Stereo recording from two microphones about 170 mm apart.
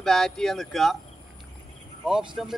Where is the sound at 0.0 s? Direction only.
Centre (ahead or behind).